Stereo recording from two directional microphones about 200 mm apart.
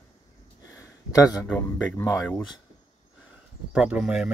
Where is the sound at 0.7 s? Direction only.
15° left (ahead or behind).